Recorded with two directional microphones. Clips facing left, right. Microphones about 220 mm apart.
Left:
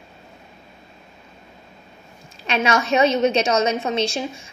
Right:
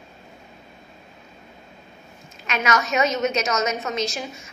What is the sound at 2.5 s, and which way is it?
A woman's voice, 30° left (ahead or behind).